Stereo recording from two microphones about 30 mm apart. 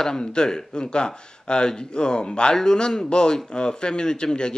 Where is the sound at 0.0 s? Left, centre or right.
Left.